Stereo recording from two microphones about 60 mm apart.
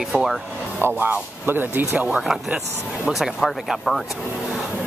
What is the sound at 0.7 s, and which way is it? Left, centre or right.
Speech, right.